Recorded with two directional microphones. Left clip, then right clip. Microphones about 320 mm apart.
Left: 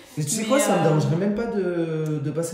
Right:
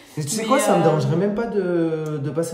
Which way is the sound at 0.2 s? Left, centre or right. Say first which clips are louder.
Right 2 dB; centre.